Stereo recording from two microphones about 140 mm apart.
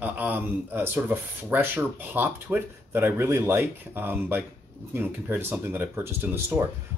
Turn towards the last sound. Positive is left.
turn(degrees=-15)  # may be behind; listen again after turning